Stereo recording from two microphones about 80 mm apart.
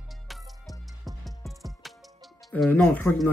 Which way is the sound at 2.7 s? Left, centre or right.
Centre.